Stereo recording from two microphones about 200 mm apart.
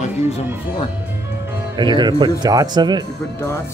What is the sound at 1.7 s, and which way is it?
Speech, 20° right (ahead or behind).